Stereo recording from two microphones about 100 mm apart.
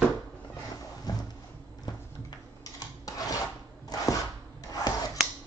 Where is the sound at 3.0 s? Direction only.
35° left (ahead or behind).